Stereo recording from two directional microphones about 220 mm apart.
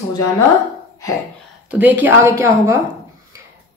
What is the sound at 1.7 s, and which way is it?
A woman's voice, 10° right (ahead or behind).